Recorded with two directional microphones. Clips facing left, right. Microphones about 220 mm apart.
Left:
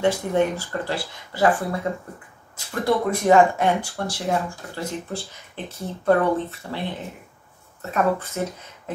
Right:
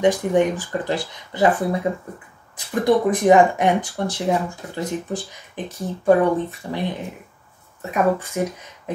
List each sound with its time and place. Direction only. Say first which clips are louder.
0.0 s speech: right 3 dB; 15° right (ahead or behind)
7.8 s speech: right 2 dB; 15° right (ahead or behind)